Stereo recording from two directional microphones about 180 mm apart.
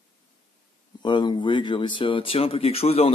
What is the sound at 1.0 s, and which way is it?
Speech, 25° left (ahead or behind).